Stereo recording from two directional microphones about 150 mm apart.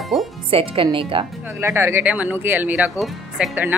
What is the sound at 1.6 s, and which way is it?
Speech, 15° right (ahead or behind).